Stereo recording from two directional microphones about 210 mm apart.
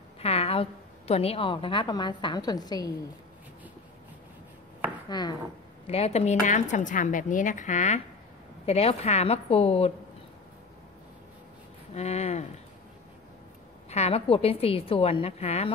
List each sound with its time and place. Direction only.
0.2 s a woman's voice: 30° left (ahead or behind)
5.1 s a woman's voice: 20° left (ahead or behind)
5.9 s a woman's voice: 30° left (ahead or behind)
11.9 s a woman's voice: 30° left (ahead or behind)
13.8 s a woman's voice: 30° left (ahead or behind)